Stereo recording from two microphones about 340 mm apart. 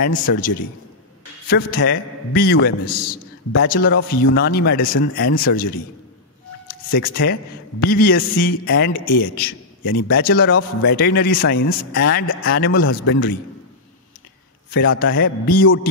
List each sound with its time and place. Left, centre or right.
0.0 s a man's voice: left
1.5 s a man's voice: left
6.9 s a man's voice: left
14.7 s a man's voice: left